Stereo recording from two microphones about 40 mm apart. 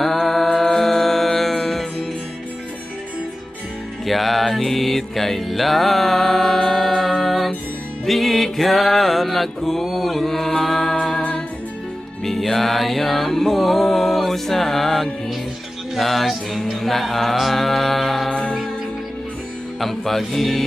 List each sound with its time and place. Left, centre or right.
0.0 s music: centre
4.0 s music: centre
12.3 s music: centre
18.3 s music: left
19.8 s music: centre